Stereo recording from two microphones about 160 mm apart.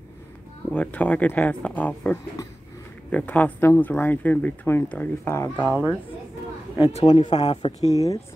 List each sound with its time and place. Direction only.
0.7 s speech: 10° left (ahead or behind)
5.7 s a woman's voice: 10° right (ahead or behind)
6.9 s speech: 40° left (ahead or behind)